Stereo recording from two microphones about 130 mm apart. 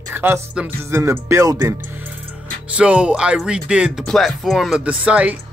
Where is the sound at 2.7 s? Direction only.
10° right (ahead or behind).